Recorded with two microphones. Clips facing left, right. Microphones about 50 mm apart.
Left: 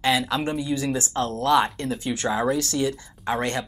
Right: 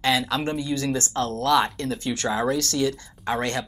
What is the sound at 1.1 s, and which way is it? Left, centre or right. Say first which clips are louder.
Speech: left 1 dB; left.